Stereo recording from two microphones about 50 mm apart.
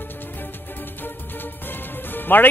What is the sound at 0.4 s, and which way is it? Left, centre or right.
Music, left.